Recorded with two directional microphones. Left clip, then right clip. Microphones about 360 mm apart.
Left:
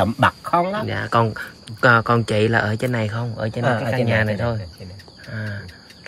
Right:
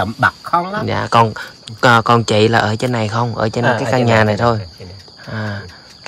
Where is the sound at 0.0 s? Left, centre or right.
Centre.